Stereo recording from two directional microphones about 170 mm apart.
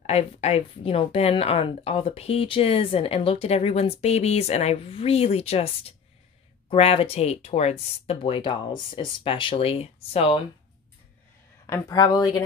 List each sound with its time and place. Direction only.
0.0 s speech: 40° left (ahead or behind)
11.6 s speech: 20° left (ahead or behind)